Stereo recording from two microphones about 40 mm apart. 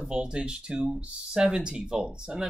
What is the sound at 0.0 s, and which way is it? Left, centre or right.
Speech, right.